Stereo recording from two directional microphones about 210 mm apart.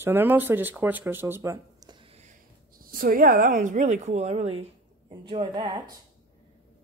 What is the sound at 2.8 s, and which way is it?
A woman's voice, 45° right (ahead or behind).